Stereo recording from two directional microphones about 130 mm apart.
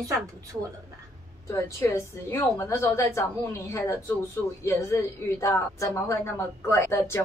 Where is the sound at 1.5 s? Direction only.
20° left (ahead or behind).